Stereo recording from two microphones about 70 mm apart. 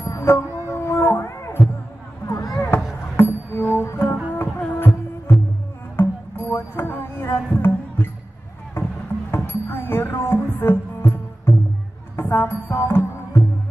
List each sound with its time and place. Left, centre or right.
0.2 s music: left
0.6 s a sound: left
2.2 s a sound: left
3.2 s music: left
4.3 s music: left
5.9 s music: left
9.3 s music: left